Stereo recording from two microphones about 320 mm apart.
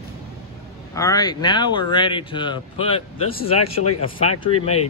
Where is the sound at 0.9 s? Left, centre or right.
Centre.